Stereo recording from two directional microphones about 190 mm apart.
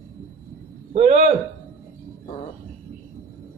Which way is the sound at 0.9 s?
35° right (ahead or behind).